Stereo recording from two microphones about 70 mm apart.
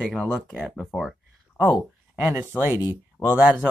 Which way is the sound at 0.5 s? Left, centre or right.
Centre.